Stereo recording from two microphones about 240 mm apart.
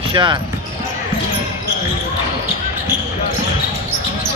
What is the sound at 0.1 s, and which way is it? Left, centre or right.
Speech, centre.